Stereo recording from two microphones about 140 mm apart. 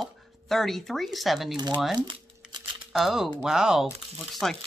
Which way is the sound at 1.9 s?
30° right (ahead or behind).